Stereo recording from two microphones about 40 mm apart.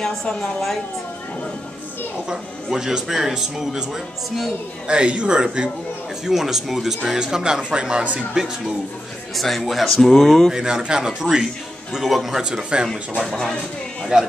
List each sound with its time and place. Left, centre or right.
0.0 s speech: centre
2.2 s a man's voice: centre
4.8 s speech: right
6.2 s a man's voice: centre
9.3 s speech: centre
10.5 s a man's voice: centre
12.4 s speech: centre
13.2 s speech: centre
14.1 s speech: right